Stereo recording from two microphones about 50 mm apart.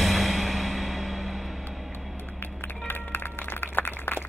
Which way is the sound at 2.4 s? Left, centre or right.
Left.